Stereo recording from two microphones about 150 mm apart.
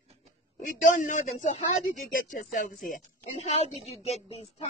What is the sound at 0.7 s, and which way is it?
Speech, 60° left (ahead or behind).